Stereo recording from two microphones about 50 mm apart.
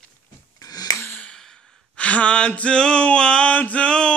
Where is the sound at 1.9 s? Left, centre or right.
Left.